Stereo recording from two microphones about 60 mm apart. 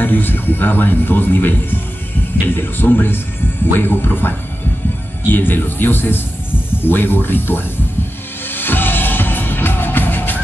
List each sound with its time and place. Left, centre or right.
0.0 s speech: left
8.5 s music: left